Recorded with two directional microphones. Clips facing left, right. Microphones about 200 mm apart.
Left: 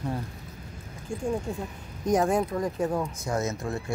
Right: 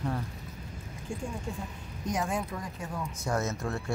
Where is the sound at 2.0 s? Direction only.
45° left (ahead or behind).